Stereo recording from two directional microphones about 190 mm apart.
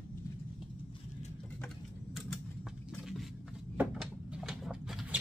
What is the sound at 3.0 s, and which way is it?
Cupboard open or close, centre (ahead or behind).